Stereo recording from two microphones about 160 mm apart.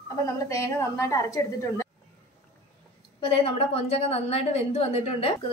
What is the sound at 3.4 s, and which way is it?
A woman's voice, 40° left (ahead or behind).